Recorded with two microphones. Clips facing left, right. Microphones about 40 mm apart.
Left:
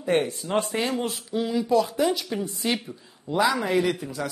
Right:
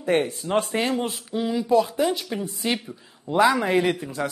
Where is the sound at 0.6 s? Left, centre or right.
Right.